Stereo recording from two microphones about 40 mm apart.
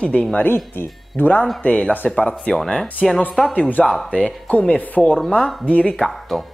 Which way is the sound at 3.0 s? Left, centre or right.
Centre.